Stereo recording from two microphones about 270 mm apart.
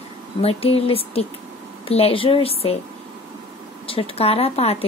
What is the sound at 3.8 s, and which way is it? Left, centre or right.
Speech, left.